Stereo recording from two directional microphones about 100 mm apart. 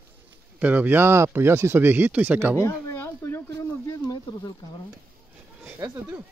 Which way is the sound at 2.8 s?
20° left (ahead or behind).